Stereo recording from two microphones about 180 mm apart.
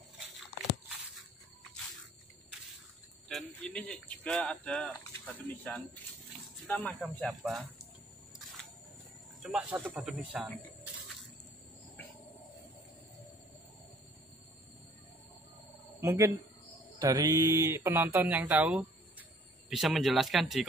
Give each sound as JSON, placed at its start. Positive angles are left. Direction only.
{"t": 3.3, "sound": "speech", "side_deg": 5}
{"t": 9.4, "sound": "speech", "side_deg": -5}
{"t": 16.0, "sound": "speech", "side_deg": -15}